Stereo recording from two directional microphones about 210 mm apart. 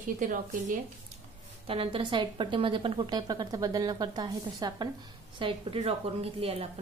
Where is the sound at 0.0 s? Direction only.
40° right (ahead or behind).